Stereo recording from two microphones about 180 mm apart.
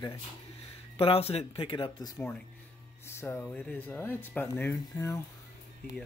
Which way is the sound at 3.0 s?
15° left (ahead or behind).